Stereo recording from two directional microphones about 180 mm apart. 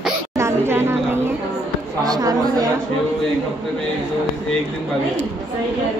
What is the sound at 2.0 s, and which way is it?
Speech, 20° right (ahead or behind).